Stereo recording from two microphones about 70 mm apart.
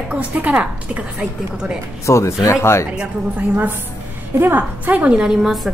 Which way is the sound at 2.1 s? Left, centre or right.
Left.